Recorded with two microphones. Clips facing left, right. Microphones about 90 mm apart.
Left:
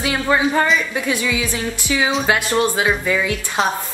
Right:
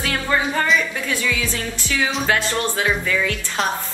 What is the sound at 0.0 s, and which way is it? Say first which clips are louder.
Speech: left 4 dB; 10° left (ahead or behind).